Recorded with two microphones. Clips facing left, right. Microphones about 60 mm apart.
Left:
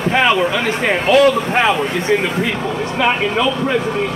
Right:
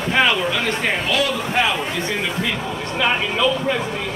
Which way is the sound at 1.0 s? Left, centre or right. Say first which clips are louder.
Left 9 dB; left.